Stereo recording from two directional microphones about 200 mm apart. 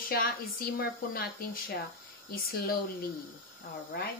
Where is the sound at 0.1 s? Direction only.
50° left (ahead or behind).